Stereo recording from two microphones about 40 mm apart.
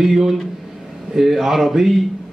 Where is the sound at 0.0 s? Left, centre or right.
Centre.